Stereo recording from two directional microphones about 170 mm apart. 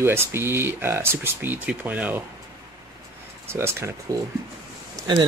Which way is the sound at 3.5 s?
15° right (ahead or behind).